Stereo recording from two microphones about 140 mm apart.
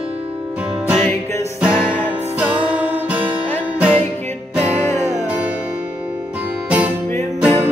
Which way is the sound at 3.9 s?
15° left (ahead or behind).